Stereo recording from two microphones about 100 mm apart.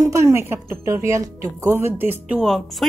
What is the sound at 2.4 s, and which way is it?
Speech, centre (ahead or behind).